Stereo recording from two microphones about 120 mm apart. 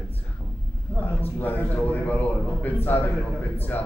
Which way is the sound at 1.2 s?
15° left (ahead or behind).